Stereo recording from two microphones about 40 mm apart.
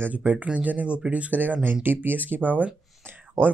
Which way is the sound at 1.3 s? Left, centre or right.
Right.